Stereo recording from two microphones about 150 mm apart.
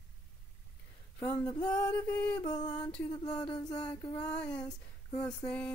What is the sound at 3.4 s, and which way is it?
Male singing, 30° left (ahead or behind).